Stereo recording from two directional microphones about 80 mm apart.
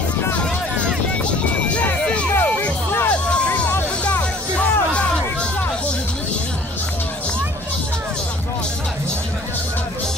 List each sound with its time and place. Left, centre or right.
1.7 s music: centre